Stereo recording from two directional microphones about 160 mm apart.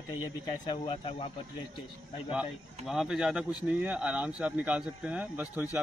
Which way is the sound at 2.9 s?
5° right (ahead or behind).